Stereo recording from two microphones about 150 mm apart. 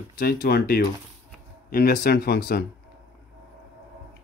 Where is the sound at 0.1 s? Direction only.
80° left.